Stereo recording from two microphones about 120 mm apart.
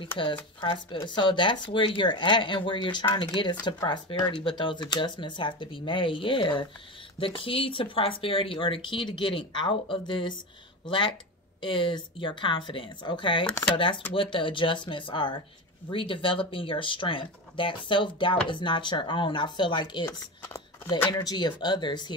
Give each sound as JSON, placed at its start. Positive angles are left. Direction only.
{"t": 0.2, "sound": "speech", "side_deg": 45}
{"t": 20.4, "sound": "a sound", "side_deg": 25}
{"t": 20.9, "sound": "speech", "side_deg": 35}